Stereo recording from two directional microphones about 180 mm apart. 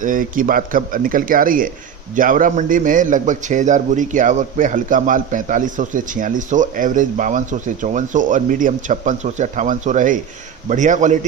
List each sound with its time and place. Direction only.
0.0 s speech: 50° right (ahead or behind)